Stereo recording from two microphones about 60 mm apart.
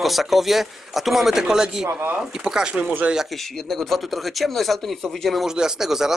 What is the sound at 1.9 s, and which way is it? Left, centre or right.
Speech, right.